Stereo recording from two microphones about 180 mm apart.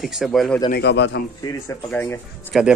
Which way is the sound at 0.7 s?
75° left (ahead or behind).